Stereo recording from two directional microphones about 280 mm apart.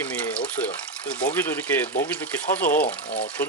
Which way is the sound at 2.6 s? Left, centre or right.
Left.